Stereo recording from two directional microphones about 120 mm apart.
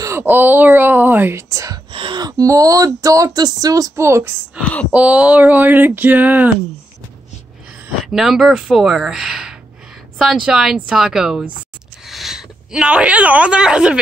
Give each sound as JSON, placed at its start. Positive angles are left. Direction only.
{"t": 0.0, "sound": "speech", "side_deg": -20}
{"t": 1.5, "sound": "speech", "side_deg": -30}
{"t": 1.9, "sound": "speech", "side_deg": -45}
{"t": 4.6, "sound": "speech", "side_deg": 10}
{"t": 4.9, "sound": "speech", "side_deg": -10}
{"t": 8.0, "sound": "speech", "side_deg": -5}